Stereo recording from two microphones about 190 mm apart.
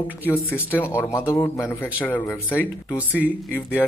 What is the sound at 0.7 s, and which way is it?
A man's voice, 10° left (ahead or behind).